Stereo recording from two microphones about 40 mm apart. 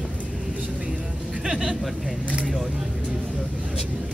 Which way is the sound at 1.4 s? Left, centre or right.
Centre.